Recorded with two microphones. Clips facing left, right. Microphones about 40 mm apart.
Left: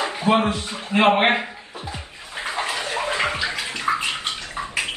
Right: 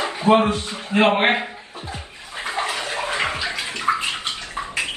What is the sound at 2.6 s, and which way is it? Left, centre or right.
Bathtub, left.